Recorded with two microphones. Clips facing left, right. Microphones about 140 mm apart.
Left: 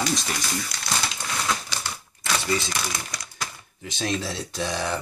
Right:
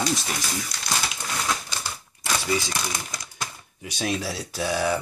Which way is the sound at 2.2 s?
10° right (ahead or behind).